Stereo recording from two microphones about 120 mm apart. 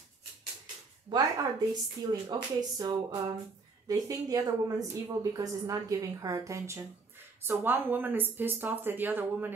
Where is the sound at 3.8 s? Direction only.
30° right (ahead or behind).